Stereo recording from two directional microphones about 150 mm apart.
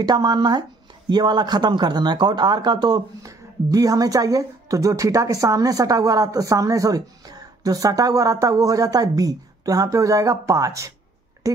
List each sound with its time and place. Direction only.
0.0 s speech: 25° right (ahead or behind)